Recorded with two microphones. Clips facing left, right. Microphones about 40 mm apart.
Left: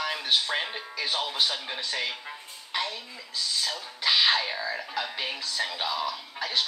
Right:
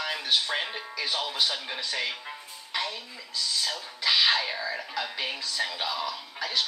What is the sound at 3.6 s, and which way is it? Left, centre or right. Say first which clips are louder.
Speech: even; centre.